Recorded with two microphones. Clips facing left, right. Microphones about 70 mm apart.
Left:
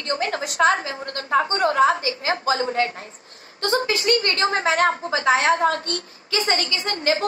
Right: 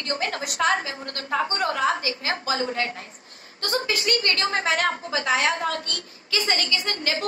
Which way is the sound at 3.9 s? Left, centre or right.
Left.